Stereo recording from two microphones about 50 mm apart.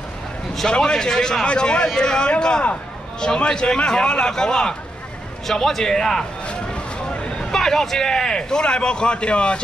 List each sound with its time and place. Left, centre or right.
0.7 s a man's voice: centre
6.4 s a sound: left
7.5 s a man's voice: centre